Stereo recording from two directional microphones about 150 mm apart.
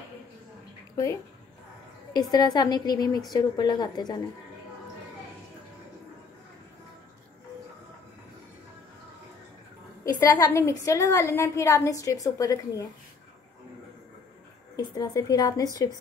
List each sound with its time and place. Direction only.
0.9 s a woman's voice: 20° left (ahead or behind)
10.0 s a woman's voice: 25° left (ahead or behind)
14.8 s a woman's voice: 25° left (ahead or behind)